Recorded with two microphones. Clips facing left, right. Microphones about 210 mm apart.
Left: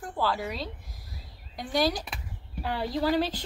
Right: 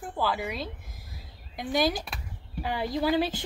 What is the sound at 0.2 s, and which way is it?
Speech, 10° right (ahead or behind).